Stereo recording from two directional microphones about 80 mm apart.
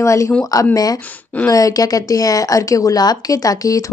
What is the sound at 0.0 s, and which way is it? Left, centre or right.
Speech, left.